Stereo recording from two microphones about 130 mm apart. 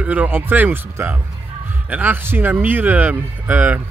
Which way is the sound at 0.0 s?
10° right (ahead or behind).